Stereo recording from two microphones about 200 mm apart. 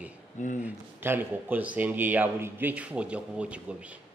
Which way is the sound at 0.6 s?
10° right (ahead or behind).